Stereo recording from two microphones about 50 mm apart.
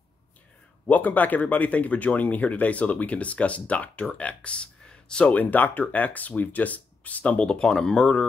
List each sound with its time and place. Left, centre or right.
0.8 s speech: left; by 5.3 s centre
5.3 s speech: left; by 8.3 s centre